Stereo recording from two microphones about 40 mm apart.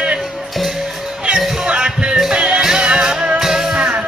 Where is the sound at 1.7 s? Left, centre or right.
Right.